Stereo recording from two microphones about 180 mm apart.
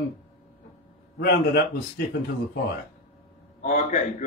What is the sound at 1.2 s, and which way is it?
Speech, 60° left (ahead or behind).